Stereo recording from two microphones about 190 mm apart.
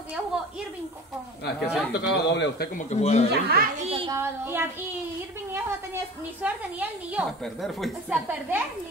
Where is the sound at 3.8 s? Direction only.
30° right (ahead or behind).